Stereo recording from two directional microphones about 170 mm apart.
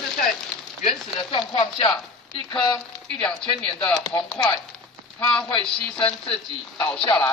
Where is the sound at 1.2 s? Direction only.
30° left (ahead or behind).